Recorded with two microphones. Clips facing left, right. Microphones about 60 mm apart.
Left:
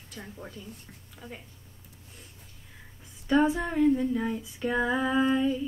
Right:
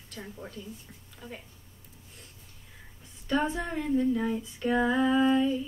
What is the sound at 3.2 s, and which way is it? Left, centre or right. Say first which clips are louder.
A woman's voice: left 5 dB; centre.